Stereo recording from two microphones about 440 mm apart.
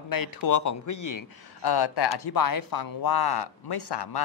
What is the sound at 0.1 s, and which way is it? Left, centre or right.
Speech, left.